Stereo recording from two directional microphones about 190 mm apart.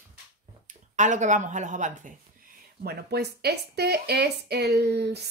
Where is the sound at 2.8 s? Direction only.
55° right (ahead or behind).